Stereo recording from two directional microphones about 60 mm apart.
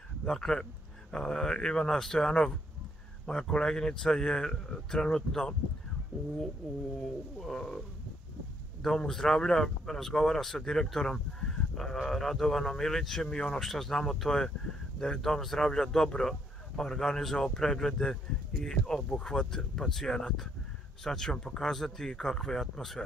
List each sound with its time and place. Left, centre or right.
0.2 s speech: centre
6.1 s speech: right
7.3 s speech: centre
8.8 s speech: centre